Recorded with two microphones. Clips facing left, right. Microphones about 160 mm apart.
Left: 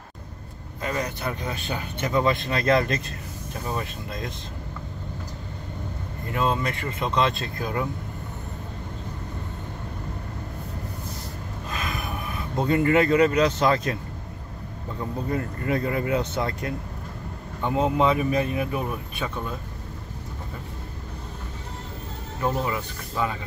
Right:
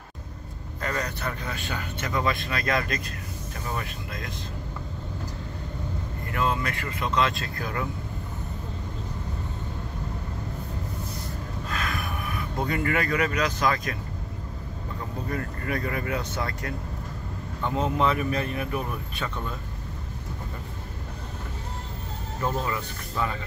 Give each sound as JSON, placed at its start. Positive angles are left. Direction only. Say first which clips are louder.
{"t": 0.8, "sound": "speech", "louder": "left 2 dB", "side_deg": 15}
{"t": 6.3, "sound": "speech", "louder": "left 2 dB", "side_deg": 25}
{"t": 11.7, "sound": "gasp", "louder": "even", "side_deg": 20}
{"t": 12.5, "sound": "speech", "louder": "left 7 dB", "side_deg": 25}
{"t": 15.2, "sound": "speech", "louder": "left 4 dB", "side_deg": 25}
{"t": 22.4, "sound": "speech", "louder": "left 3 dB", "side_deg": 15}